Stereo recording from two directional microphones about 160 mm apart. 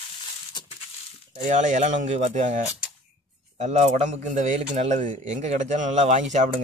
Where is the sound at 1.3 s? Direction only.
50° right (ahead or behind).